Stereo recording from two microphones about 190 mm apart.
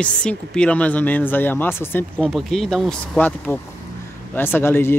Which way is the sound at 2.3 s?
Centre (ahead or behind).